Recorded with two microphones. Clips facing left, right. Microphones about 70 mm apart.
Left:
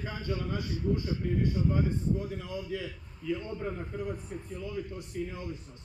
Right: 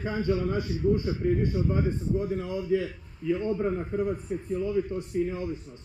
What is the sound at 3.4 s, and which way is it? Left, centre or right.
Speech, right.